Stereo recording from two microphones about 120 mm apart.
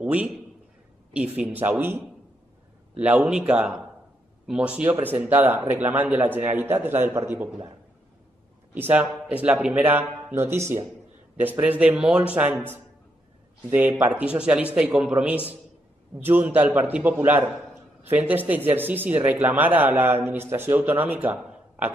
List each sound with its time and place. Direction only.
0.0 s a man's voice: 10° right (ahead or behind)
3.0 s a man's voice: 5° right (ahead or behind)
8.7 s a man's voice: 15° right (ahead or behind)
16.2 s a man's voice: 20° right (ahead or behind)
21.4 s a sound: 10° right (ahead or behind)